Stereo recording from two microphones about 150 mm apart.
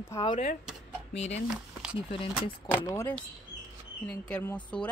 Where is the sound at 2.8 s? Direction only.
20° left (ahead or behind).